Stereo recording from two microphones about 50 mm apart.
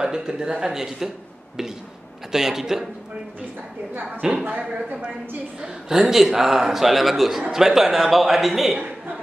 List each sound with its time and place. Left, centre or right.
0.0 s a man's voice: centre
2.3 s a man's voice: centre
3.9 s a woman's voice: right
5.6 s a man's voice: centre